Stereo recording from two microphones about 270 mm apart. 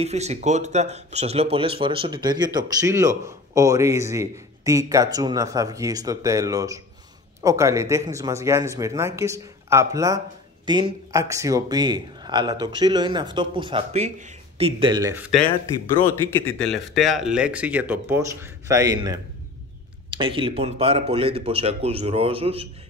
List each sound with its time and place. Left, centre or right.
0.0 s speech: right
20.2 s speech: centre